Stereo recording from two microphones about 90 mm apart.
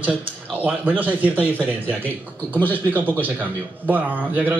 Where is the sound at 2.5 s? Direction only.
20° left (ahead or behind).